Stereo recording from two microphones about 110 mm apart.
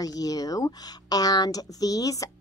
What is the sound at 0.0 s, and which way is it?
Speech, 35° left (ahead or behind).